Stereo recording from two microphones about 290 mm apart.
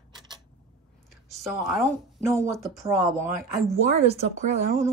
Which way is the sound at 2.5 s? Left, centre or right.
Centre.